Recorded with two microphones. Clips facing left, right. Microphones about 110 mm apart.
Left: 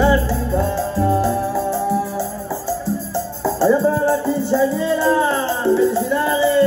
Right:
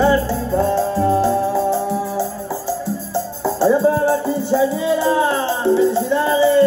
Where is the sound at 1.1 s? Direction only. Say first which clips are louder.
Right 2 dB; 25° right (ahead or behind).